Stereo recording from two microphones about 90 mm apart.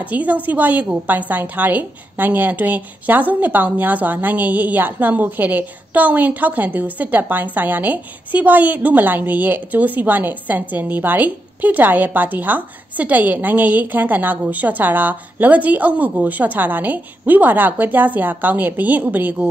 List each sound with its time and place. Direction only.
0.0 s a woman's voice: 20° right (ahead or behind)